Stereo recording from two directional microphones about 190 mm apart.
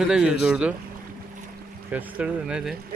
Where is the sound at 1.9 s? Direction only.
5° right (ahead or behind).